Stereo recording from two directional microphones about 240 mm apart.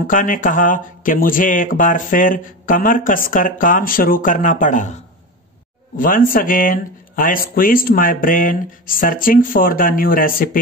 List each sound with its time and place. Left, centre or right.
0.0 s speech: left
5.9 s speech: left